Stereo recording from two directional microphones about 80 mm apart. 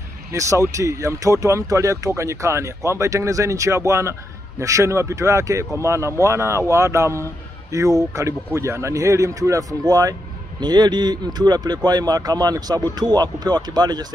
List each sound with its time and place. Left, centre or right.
0.3 s speech: right
10.6 s speech: right